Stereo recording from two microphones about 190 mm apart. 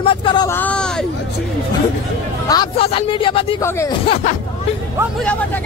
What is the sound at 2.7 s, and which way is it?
Speech, 30° left (ahead or behind).